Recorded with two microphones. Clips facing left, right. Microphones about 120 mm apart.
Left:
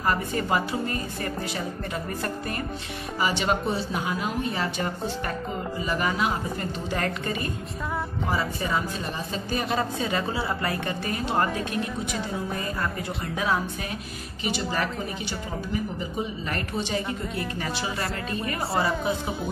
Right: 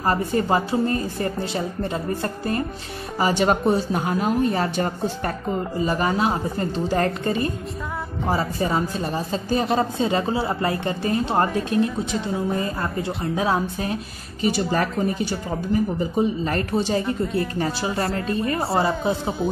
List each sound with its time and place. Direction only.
0.0 s a woman's voice: 35° right (ahead or behind)